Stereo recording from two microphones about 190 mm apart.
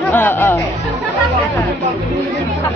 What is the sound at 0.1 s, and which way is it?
Music, 10° left (ahead or behind).